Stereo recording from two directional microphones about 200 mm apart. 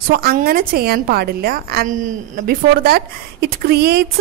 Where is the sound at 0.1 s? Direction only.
50° right (ahead or behind).